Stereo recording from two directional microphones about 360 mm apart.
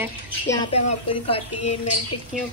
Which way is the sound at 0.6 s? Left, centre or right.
Centre.